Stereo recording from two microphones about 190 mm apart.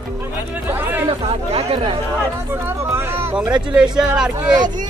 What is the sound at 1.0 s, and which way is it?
Speech, 30° right (ahead or behind).